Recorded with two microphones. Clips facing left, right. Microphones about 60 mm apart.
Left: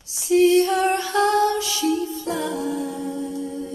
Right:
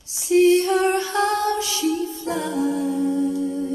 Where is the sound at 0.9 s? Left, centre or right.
Right.